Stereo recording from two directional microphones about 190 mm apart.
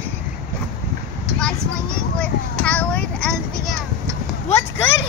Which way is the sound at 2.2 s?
5° left (ahead or behind).